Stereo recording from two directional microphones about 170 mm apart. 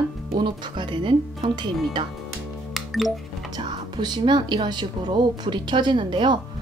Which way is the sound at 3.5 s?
25° right (ahead or behind).